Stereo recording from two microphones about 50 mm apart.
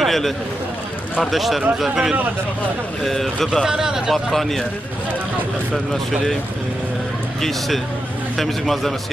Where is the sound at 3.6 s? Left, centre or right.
Centre.